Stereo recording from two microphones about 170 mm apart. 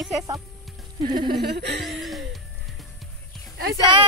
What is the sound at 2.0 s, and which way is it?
Music, centre (ahead or behind).